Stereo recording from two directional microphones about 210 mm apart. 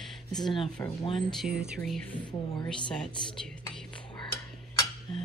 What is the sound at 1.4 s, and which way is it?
Speech, 5° right (ahead or behind).